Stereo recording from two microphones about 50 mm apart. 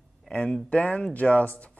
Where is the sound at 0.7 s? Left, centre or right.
Left.